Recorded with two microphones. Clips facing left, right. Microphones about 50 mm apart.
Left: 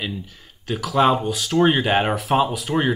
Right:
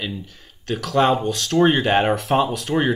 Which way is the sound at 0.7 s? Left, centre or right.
Centre.